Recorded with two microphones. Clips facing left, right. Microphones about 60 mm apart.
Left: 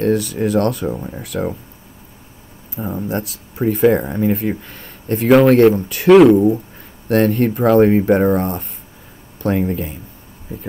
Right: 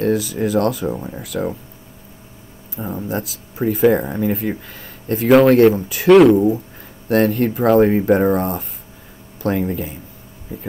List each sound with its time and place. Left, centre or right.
0.0 s speech: centre
2.7 s speech: centre
9.7 s speech: centre